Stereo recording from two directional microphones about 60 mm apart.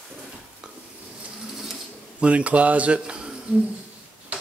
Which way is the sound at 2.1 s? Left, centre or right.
Right.